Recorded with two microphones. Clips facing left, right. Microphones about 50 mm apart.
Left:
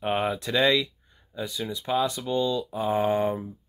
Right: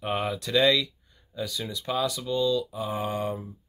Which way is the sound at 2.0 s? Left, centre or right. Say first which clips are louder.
Even; left.